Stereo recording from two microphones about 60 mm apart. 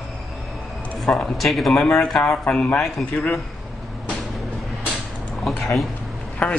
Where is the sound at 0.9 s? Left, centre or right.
Centre.